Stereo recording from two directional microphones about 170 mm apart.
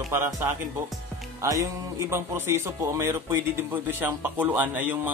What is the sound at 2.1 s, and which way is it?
Speech, 15° right (ahead or behind).